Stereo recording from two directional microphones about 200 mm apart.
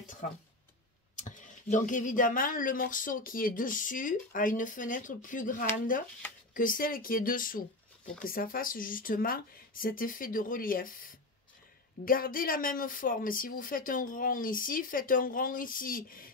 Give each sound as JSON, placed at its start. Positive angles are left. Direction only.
{"t": 1.1, "sound": "speech", "side_deg": 40}